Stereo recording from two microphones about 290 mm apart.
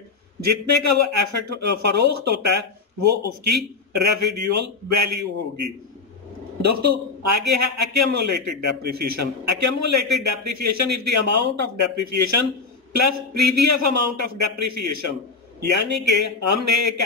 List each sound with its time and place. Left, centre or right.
0.4 s speech: right
6.6 s speech: right